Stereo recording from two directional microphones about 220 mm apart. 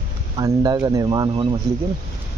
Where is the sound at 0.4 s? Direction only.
15° right (ahead or behind).